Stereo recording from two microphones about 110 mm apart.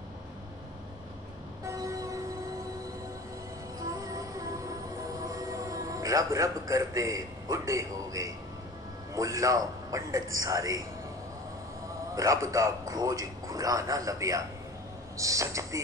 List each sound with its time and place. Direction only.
1.6 s vehicle: 30° right (ahead or behind)
3.8 s train: 35° right (ahead or behind)
9.1 s a man's voice: 30° right (ahead or behind)
12.2 s a man's voice: 30° right (ahead or behind)